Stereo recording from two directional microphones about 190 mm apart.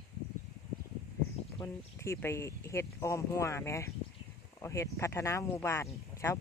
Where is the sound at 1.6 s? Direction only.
15° left (ahead or behind).